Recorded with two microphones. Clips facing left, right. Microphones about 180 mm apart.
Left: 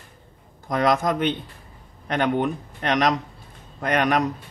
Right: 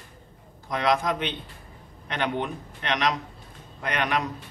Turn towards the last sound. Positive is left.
turn(degrees=45)  # may be behind; listen again after turning